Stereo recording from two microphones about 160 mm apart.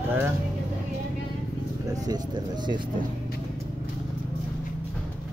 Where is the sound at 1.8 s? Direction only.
25° right (ahead or behind).